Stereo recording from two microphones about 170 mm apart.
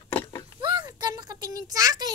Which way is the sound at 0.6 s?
25° right (ahead or behind).